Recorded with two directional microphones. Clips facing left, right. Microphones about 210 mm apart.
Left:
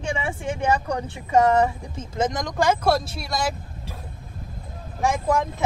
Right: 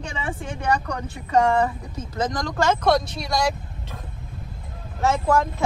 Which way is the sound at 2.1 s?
20° left (ahead or behind).